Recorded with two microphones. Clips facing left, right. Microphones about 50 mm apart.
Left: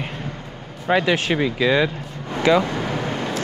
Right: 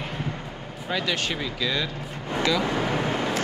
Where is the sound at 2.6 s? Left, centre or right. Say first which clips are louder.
Even; centre.